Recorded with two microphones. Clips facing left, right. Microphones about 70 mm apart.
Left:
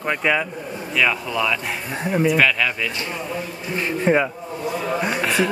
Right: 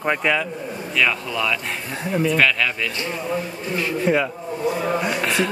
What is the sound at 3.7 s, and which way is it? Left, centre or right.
Speech, left.